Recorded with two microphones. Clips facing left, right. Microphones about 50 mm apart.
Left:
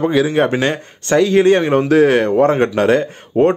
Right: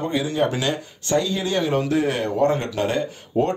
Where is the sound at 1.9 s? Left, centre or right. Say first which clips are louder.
Left 10 dB; left.